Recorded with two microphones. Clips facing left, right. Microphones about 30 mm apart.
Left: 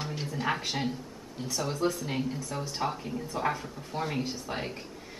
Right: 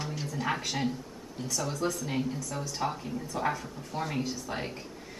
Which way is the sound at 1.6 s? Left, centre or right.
Left.